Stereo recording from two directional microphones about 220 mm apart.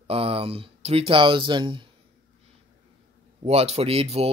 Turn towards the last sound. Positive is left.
turn(degrees=-25)  # may be behind; listen again after turning